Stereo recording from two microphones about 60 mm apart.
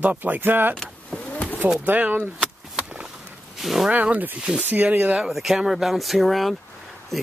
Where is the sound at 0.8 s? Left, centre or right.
Centre.